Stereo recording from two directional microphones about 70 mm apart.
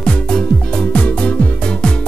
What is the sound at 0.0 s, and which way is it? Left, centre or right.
Music, centre.